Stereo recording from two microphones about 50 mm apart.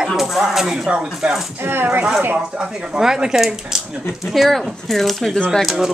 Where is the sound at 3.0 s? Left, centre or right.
Centre.